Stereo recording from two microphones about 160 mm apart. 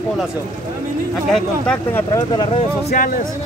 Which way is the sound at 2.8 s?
60° left (ahead or behind).